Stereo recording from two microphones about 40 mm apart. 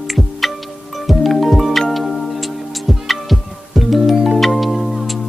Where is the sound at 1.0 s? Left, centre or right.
Centre.